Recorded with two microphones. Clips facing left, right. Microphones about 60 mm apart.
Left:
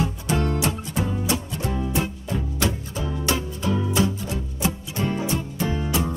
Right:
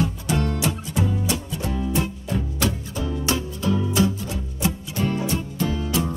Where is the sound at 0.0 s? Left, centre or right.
Left.